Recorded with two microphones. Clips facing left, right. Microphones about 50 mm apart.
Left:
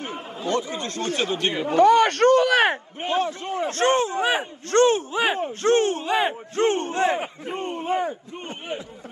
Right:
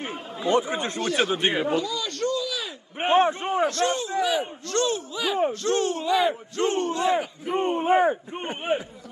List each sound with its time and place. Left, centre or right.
0.0 s chatter: right
1.3 s a man's voice: centre
1.8 s speech: left
3.0 s a man's voice: right
3.6 s speech: left
7.5 s a man's voice: centre